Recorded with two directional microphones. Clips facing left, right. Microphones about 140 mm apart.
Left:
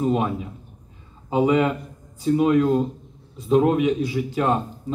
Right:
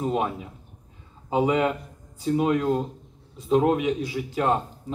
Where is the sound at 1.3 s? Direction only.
30° right (ahead or behind).